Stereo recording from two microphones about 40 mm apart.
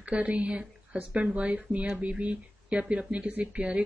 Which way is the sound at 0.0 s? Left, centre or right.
Right.